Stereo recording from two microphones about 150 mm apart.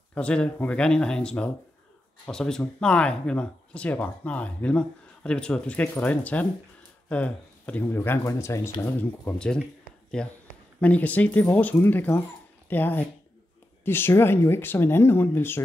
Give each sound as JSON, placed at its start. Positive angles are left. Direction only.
{"t": 0.1, "sound": "speech", "side_deg": 5}